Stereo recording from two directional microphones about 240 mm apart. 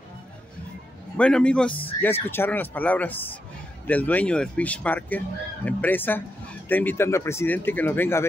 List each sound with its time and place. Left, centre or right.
1.1 s speech: centre
1.7 s speech: left
2.0 s speech: centre